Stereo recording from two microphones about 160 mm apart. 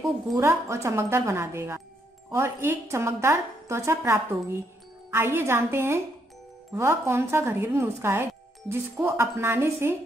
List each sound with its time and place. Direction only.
0.4 s a woman's voice: 20° right (ahead or behind)